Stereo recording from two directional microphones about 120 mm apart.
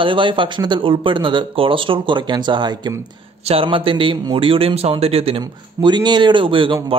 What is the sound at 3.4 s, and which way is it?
A man's voice, 50° right (ahead or behind).